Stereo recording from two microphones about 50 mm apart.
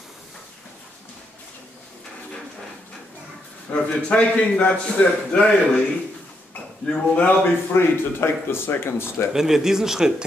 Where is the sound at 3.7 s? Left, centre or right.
Left.